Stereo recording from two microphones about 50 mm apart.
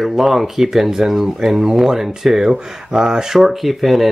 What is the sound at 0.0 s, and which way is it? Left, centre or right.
Speech, centre.